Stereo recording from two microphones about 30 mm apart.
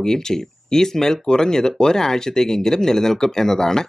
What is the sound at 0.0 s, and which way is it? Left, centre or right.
Speech, centre.